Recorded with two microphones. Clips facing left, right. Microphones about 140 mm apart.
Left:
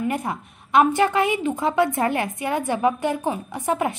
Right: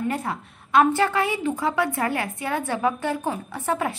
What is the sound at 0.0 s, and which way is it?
A woman's voice, 15° left (ahead or behind).